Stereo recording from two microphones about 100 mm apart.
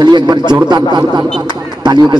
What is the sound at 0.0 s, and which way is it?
A man's voice, 45° right (ahead or behind).